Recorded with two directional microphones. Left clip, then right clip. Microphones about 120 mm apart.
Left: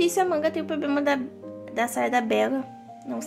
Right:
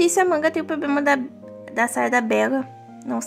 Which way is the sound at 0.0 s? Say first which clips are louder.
Right 4 dB; 30° right (ahead or behind).